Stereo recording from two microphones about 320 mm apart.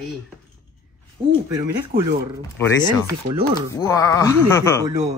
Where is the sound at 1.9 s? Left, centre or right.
Right.